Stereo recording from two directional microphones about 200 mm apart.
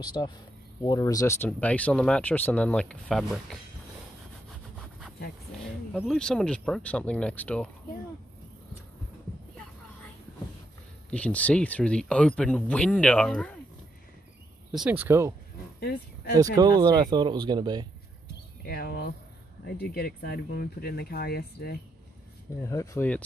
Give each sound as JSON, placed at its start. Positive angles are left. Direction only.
{"t": 0.0, "sound": "insect", "side_deg": 20}
{"t": 0.8, "sound": "speech", "side_deg": 15}
{"t": 5.9, "sound": "speech", "side_deg": 0}
{"t": 11.1, "sound": "speech", "side_deg": 5}
{"t": 14.7, "sound": "speech", "side_deg": -5}
{"t": 15.8, "sound": "speech", "side_deg": 50}
{"t": 16.5, "sound": "speech", "side_deg": -20}
{"t": 18.7, "sound": "speech", "side_deg": 50}
{"t": 22.6, "sound": "speech", "side_deg": 15}